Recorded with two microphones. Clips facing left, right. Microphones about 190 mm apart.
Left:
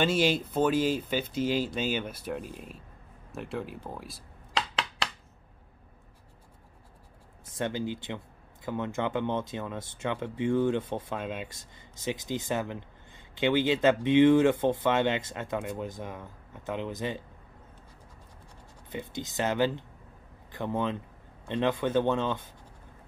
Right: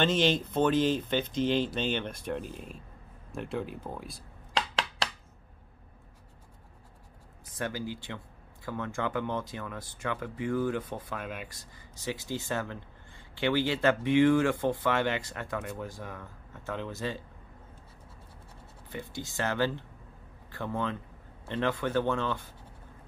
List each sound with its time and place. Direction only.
0.0 s speech: 10° left (ahead or behind)
7.4 s speech: 25° left (ahead or behind)
18.9 s speech: 20° left (ahead or behind)